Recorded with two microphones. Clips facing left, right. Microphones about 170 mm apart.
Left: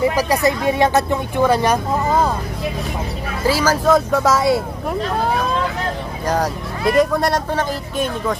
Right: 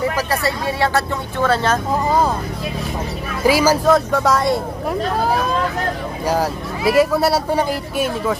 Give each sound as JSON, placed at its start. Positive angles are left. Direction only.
{"t": 0.0, "sound": "speech", "side_deg": 15}
{"t": 1.9, "sound": "speech", "side_deg": 0}
{"t": 3.4, "sound": "speech", "side_deg": -10}
{"t": 3.8, "sound": "speech", "side_deg": 0}
{"t": 6.2, "sound": "speech", "side_deg": -5}